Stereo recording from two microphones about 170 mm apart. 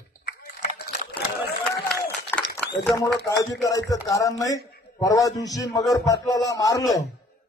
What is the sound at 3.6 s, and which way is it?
A man's voice, 20° left (ahead or behind).